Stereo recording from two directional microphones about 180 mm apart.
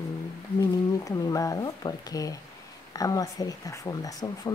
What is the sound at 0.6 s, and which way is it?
Speech, 20° left (ahead or behind).